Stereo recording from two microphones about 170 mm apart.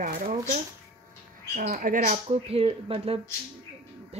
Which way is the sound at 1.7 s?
50° right (ahead or behind).